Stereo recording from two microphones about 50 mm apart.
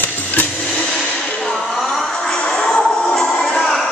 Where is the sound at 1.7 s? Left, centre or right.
Centre.